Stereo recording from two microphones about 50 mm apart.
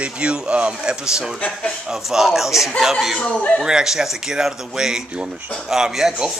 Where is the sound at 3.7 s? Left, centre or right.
Centre.